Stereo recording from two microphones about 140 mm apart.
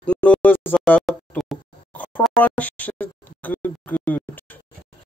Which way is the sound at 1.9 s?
10° left (ahead or behind).